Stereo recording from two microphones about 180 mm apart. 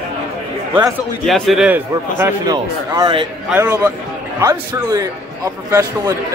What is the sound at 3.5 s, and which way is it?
A man's voice, 15° right (ahead or behind).